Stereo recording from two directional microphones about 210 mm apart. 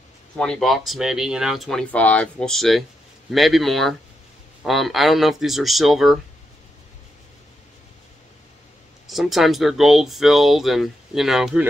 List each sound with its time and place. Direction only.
0.4 s speech: 5° left (ahead or behind)
9.0 s speech: centre (ahead or behind)